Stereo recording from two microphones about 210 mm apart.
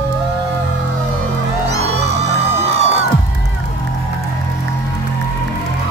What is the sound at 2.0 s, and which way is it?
Music, 30° right (ahead or behind).